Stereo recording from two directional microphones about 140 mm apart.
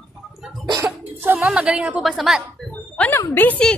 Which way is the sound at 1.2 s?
10° right (ahead or behind).